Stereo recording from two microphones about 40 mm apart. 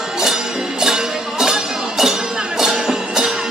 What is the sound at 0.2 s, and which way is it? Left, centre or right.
Music, centre.